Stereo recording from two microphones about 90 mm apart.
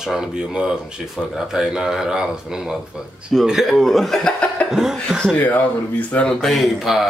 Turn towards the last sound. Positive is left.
turn(degrees=0)  # may be behind; listen again after turning